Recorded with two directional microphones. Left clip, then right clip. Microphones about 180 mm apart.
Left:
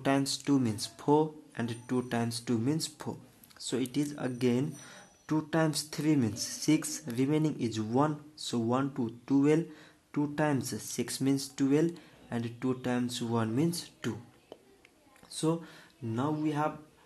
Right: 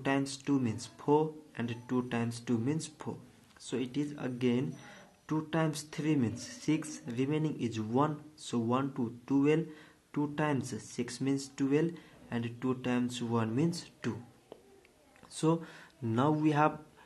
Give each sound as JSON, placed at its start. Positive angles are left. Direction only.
{"t": 0.0, "sound": "speech", "side_deg": 25}
{"t": 15.3, "sound": "speech", "side_deg": 5}
{"t": 16.1, "sound": "speech", "side_deg": -10}